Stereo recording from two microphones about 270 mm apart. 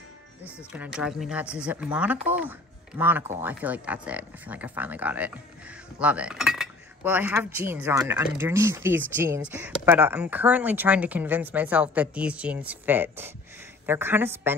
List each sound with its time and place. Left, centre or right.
0.7 s speech: centre
5.9 s cutlery: centre